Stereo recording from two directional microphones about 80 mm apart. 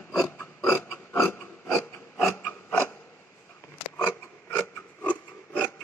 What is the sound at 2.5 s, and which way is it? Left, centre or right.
Mechanisms, left.